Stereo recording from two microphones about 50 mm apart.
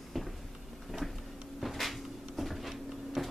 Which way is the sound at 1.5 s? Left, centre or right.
Centre.